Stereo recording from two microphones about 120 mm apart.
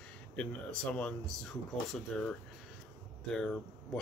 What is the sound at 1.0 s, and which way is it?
Speech, 5° left (ahead or behind).